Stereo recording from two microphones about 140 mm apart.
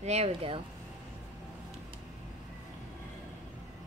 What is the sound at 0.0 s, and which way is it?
Speech, 50° right (ahead or behind).